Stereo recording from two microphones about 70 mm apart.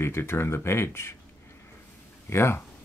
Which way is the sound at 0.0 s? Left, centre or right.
Left.